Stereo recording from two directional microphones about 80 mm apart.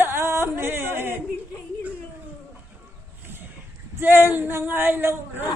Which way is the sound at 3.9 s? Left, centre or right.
Right.